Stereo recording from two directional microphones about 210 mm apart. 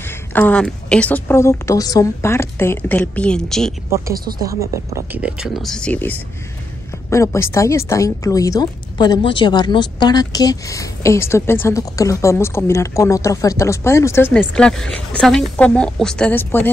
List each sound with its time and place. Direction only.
0.0 s speech: 10° left (ahead or behind)
4.1 s speech: 45° right (ahead or behind)
4.4 s speech: 15° right (ahead or behind); by 16.6 s 10° left (ahead or behind)